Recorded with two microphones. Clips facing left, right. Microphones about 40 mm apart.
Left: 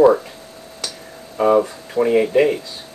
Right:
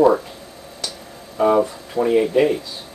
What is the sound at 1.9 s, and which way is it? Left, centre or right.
Speech, left.